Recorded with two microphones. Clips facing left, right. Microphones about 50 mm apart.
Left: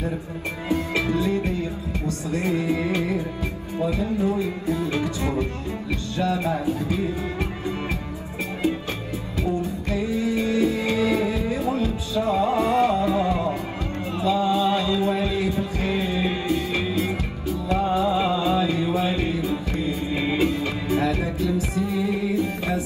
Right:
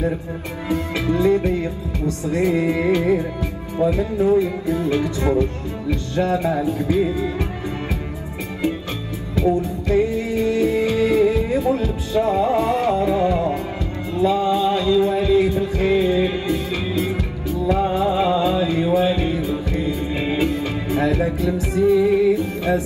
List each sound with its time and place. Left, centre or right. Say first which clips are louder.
0.7 s music: right 2 dB; right
3.8 s music: right 6 dB; right
4.2 s music: right 7 dB; right
9.3 s music: right 7 dB; right
14.2 s mantra: right 3 dB; right
15.2 s music: right 7 dB; right